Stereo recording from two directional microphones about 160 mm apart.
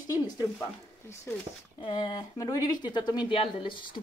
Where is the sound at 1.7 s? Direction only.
30° left (ahead or behind).